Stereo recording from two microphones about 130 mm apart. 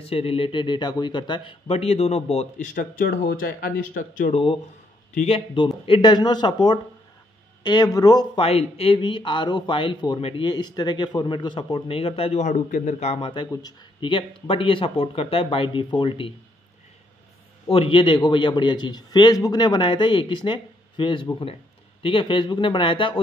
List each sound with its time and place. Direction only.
0.0 s speech: 50° left (ahead or behind)
2.7 s speech: 90° left
4.3 s speech: 45° left (ahead or behind)
5.1 s speech: 55° left (ahead or behind)
5.9 s speech: 40° left (ahead or behind)
8.4 s speech: 50° left (ahead or behind); by 12.9 s 80° left
13.0 s speech: 45° left (ahead or behind)
17.6 s speech: 45° left (ahead or behind)